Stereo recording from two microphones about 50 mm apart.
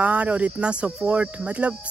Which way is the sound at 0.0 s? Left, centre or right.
Right.